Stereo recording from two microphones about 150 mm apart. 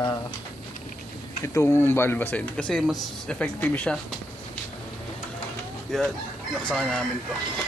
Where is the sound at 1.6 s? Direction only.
20° left (ahead or behind).